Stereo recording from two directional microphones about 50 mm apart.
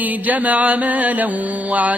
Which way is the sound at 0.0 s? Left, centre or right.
Right.